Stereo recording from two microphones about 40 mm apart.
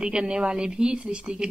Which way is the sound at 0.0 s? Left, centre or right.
Right.